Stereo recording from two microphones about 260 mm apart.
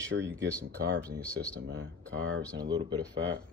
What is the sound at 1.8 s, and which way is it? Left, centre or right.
Speech, right.